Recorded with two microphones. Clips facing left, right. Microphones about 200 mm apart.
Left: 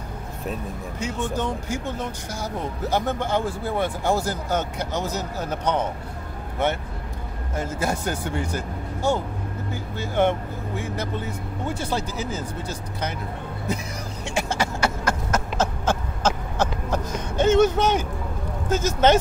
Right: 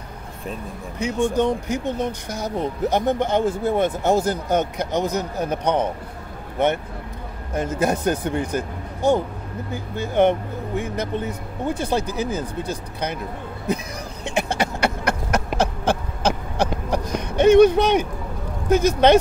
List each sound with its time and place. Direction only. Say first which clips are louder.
0.9 s speech: right 7 dB; 15° right (ahead or behind)
7.5 s speech: right 5 dB; 15° right (ahead or behind)
14.2 s a sound: right 3 dB; 20° right (ahead or behind)
18.7 s speech: right 4 dB; 15° right (ahead or behind)